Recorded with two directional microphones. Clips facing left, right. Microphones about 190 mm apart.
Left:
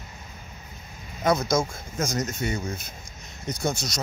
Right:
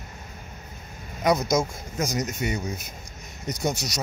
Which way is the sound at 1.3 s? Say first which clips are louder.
Right 1 dB; 15° right (ahead or behind).